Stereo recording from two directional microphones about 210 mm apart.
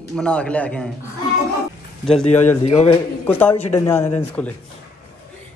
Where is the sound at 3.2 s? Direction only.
10° left (ahead or behind).